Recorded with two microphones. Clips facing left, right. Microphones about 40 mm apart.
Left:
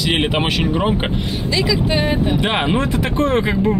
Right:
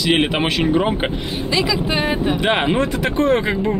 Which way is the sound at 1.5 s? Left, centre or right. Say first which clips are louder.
Left 1 dB; centre.